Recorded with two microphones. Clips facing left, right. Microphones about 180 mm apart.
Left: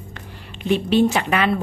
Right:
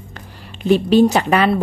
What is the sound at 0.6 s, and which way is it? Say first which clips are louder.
Speech: right 5 dB; 40° right (ahead or behind).